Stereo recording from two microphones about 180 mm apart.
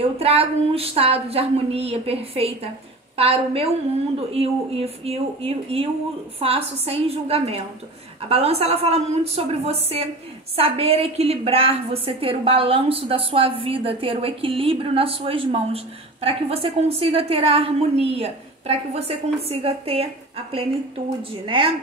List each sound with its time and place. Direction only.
0.2 s a woman's voice: 35° right (ahead or behind)